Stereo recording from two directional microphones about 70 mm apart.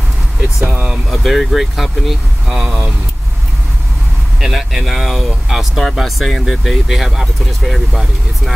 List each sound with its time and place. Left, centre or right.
1.1 s speech: centre
4.4 s speech: centre